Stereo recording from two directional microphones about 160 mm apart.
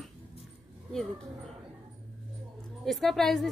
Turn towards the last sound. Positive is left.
turn(degrees=0)  # may be behind; listen again after turning